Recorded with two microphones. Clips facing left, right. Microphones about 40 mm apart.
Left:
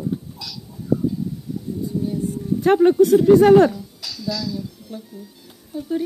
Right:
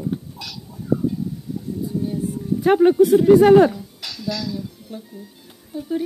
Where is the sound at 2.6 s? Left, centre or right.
Centre.